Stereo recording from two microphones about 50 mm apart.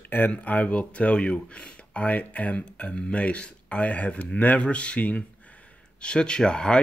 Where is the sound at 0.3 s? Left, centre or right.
Left.